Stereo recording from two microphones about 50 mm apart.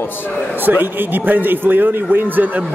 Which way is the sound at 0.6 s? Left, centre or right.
Right.